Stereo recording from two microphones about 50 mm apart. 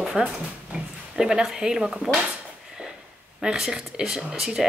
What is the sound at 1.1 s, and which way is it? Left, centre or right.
Speech, centre.